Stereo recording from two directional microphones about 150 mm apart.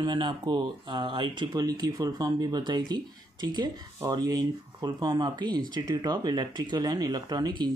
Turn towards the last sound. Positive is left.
turn(degrees=-30)  # may be behind; listen again after turning